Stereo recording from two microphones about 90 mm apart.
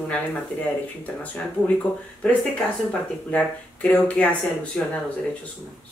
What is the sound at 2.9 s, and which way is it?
Speech, 15° left (ahead or behind).